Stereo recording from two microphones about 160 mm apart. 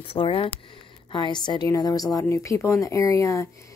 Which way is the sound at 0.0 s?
35° left (ahead or behind).